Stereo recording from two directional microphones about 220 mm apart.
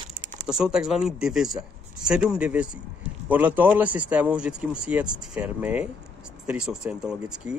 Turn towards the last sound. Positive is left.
turn(degrees=-5)  # may be behind; listen again after turning